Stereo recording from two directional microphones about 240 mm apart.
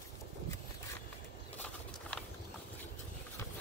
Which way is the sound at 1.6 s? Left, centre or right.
Centre.